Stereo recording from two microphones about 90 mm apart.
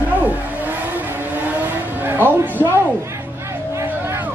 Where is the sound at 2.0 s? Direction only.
25° right (ahead or behind).